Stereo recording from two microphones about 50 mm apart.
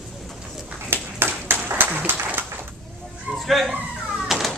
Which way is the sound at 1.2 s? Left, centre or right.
Right.